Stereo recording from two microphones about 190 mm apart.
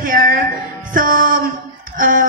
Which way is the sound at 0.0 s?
45° right (ahead or behind).